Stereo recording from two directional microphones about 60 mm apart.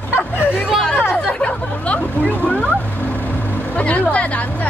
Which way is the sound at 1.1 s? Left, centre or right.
Centre.